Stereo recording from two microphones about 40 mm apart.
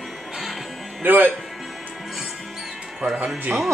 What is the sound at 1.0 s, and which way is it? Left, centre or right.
Speech, right.